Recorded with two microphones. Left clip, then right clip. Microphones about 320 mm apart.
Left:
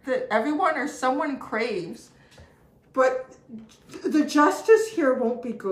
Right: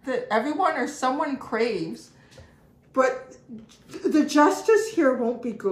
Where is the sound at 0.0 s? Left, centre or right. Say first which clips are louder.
Left 1 dB; centre.